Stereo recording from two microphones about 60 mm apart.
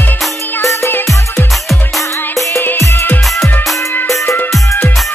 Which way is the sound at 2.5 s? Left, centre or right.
Left.